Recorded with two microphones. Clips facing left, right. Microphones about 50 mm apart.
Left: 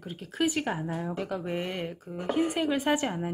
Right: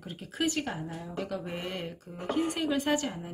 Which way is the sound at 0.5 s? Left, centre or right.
Centre.